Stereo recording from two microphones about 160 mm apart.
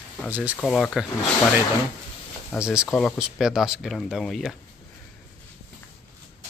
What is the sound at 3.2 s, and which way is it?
Speech, 5° right (ahead or behind).